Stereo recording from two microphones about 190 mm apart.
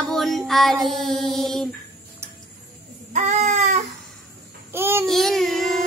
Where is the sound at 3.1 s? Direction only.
40° right (ahead or behind).